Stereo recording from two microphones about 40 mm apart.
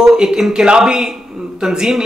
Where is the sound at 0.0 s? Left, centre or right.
Centre.